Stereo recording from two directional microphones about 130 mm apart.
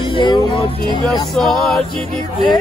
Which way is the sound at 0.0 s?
35° left (ahead or behind).